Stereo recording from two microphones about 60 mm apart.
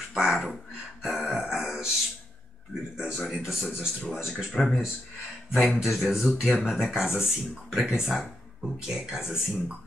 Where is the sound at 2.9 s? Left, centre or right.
Centre.